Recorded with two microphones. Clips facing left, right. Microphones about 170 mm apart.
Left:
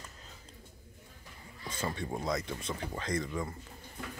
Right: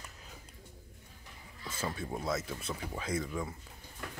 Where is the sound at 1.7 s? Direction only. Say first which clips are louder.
Left 1 dB; 5° right (ahead or behind).